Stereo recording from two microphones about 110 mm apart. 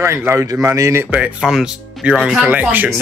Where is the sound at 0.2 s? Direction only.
25° right (ahead or behind).